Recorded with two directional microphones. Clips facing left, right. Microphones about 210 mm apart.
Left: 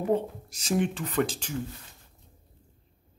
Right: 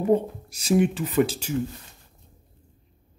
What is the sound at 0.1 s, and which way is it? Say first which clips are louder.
Speech: right 5 dB; 10° right (ahead or behind).